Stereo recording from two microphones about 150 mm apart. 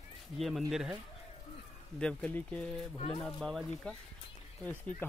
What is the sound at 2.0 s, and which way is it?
Speech, 5° left (ahead or behind).